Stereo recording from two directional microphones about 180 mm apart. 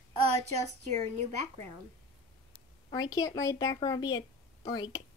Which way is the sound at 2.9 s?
20° left (ahead or behind).